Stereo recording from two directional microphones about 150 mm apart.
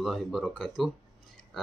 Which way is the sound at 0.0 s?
Centre (ahead or behind).